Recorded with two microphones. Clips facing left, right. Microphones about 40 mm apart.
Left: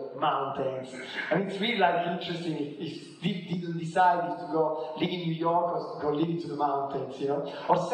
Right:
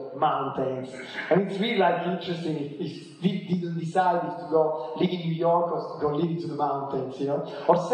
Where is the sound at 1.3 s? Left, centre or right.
Centre.